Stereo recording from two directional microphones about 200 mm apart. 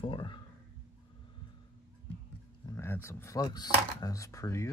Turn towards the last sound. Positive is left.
turn(degrees=15)  # may be behind; listen again after turning